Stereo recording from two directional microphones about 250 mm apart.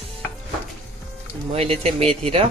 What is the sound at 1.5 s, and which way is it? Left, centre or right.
Speech, right.